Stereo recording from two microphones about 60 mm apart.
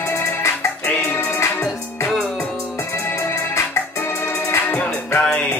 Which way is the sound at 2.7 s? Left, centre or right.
Left.